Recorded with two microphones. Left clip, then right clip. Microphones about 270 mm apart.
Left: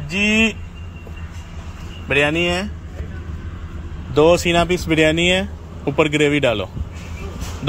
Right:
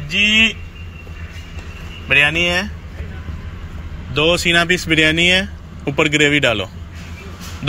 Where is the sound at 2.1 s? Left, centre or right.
Left.